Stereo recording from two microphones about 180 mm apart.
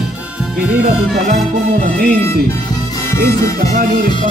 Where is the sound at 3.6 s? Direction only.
50° right (ahead or behind).